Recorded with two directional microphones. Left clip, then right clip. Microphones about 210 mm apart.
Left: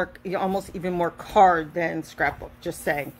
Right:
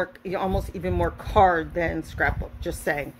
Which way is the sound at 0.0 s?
10° left (ahead or behind).